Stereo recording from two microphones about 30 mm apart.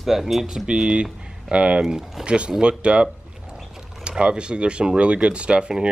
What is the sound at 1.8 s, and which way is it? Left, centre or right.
Speech, centre.